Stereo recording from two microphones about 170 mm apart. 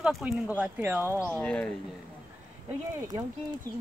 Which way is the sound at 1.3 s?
5° left (ahead or behind).